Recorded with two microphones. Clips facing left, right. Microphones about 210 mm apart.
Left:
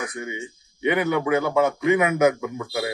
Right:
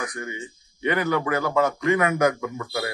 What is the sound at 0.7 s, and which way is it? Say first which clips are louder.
Speech: left 2 dB; 20° left (ahead or behind).